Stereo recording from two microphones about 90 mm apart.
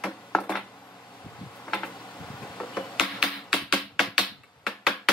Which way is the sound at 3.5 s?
10° left (ahead or behind).